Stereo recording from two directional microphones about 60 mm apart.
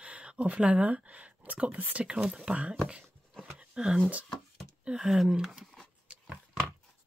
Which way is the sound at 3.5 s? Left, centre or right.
Centre.